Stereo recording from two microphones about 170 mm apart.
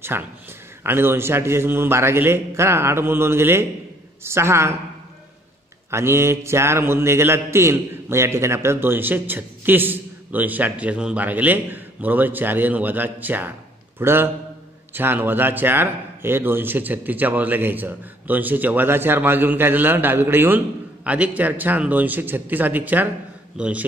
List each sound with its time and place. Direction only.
0.1 s a man's voice: 15° right (ahead or behind)
5.9 s a man's voice: 15° right (ahead or behind)